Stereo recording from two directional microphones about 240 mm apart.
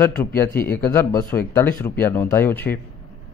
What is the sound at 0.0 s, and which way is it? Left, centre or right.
Speech, centre.